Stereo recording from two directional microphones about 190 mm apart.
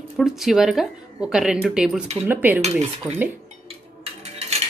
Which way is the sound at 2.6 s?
35° right (ahead or behind).